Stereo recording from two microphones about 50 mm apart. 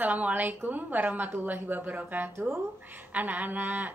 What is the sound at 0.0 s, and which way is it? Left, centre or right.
A woman's voice, right.